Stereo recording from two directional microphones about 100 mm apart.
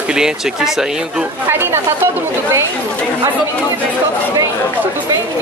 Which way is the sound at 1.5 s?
20° right (ahead or behind).